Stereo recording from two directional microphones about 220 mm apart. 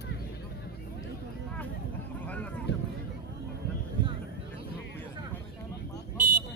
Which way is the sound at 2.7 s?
50° left (ahead or behind).